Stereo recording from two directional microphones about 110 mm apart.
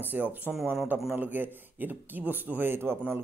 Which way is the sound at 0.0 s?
15° right (ahead or behind).